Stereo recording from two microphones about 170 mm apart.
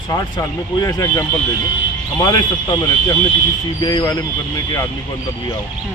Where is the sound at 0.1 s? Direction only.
20° left (ahead or behind).